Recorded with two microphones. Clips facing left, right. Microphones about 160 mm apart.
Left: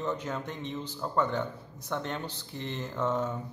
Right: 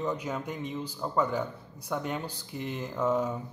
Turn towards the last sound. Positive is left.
turn(degrees=-10)  # may be behind; listen again after turning